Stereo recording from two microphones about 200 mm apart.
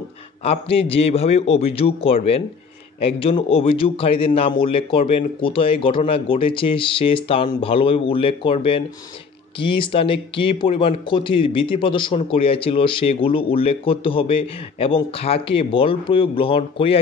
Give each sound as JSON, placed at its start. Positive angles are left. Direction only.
{"t": 0.4, "sound": "speech", "side_deg": 30}